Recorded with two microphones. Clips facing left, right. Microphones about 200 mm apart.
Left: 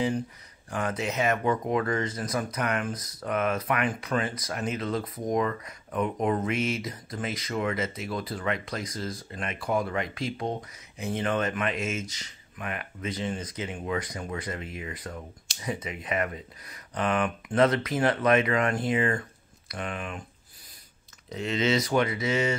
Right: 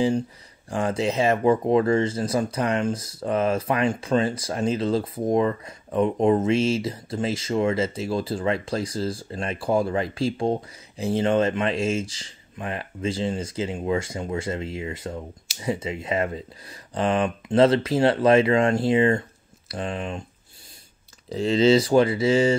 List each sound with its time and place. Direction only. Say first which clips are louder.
0.7 s speech: right 6 dB; 30° right (ahead or behind)
21.3 s speech: right 8 dB; 30° right (ahead or behind)